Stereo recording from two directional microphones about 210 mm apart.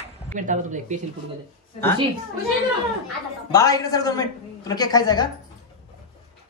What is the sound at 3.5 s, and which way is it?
A woman's voice, 15° left (ahead or behind).